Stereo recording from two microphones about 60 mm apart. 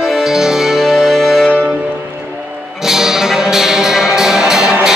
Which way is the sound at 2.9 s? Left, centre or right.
Centre.